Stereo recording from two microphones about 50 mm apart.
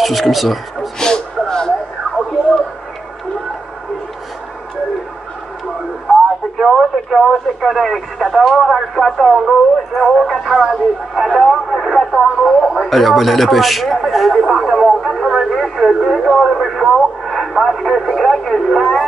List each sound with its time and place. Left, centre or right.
0.0 s speech: centre
0.9 s a sound: centre
6.6 s speech: centre